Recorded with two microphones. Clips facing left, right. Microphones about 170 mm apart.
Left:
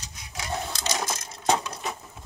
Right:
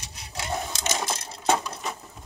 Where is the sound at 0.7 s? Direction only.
20° right (ahead or behind).